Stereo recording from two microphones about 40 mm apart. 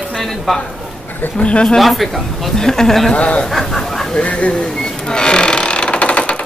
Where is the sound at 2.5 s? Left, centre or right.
Centre.